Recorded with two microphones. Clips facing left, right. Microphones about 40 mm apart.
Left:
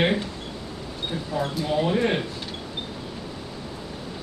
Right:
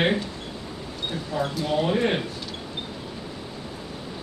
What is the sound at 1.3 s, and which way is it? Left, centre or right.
Speech, centre.